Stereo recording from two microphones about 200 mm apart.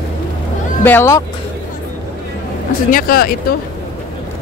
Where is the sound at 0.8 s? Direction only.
10° left (ahead or behind).